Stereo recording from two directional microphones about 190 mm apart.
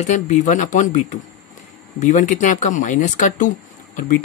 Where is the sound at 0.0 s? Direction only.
40° left (ahead or behind).